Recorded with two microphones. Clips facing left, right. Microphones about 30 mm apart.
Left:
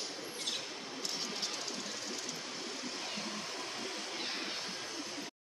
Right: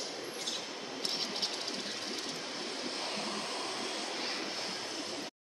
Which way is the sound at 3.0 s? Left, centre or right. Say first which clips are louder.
Right 3 dB; right.